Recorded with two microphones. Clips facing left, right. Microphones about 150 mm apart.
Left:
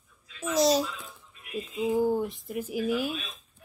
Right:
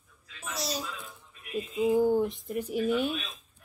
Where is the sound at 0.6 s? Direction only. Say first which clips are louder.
Left 12 dB; 90° left.